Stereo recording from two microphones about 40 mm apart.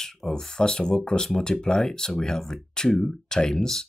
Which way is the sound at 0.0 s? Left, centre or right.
Centre.